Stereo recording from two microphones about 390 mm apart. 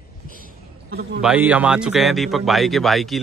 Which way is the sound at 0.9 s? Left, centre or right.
Right.